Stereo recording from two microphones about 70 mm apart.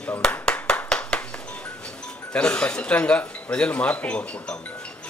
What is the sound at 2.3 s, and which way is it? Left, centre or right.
A man's voice, centre.